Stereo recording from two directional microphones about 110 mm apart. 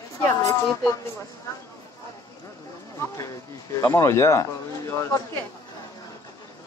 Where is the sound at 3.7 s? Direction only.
30° left (ahead or behind).